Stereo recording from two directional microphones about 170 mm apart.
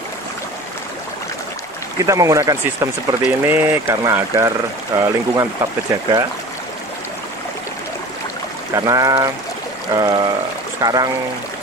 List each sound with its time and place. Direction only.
2.0 s speech: 20° right (ahead or behind)
8.7 s speech: 20° right (ahead or behind)